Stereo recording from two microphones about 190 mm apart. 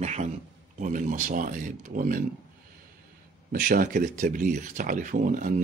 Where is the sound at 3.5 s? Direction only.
50° right (ahead or behind).